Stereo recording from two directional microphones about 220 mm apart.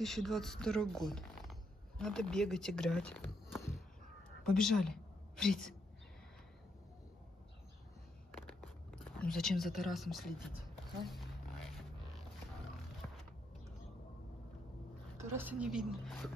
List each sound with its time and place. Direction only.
0.0 s speech: centre (ahead or behind)
4.4 s a woman's voice: centre (ahead or behind)
8.5 s speech: 5° left (ahead or behind)
11.1 s a sound: centre (ahead or behind)
15.1 s a woman's voice: 10° right (ahead or behind)